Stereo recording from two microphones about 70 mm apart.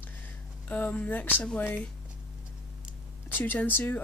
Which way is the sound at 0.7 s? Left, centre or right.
Left.